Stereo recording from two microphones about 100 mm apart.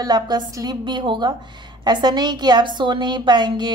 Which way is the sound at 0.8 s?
50° right (ahead or behind).